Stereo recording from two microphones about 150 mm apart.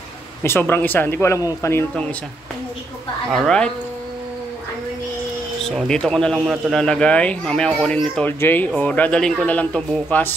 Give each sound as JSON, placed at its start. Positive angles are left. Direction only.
{"t": 0.4, "sound": "speech", "side_deg": 15}
{"t": 3.3, "sound": "a woman's voice", "side_deg": 5}
{"t": 5.8, "sound": "speech", "side_deg": 5}